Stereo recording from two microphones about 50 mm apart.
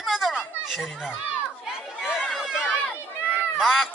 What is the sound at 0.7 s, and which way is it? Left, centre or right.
Speech, centre.